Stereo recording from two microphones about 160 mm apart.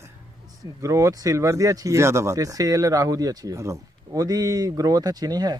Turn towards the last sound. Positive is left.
turn(degrees=-25)  # may be behind; listen again after turning